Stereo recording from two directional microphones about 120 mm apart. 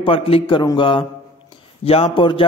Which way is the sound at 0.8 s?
45° left (ahead or behind).